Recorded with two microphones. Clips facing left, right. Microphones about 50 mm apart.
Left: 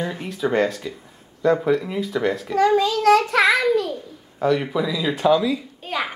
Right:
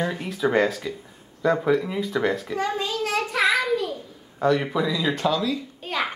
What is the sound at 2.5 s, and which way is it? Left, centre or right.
A child's voice, left.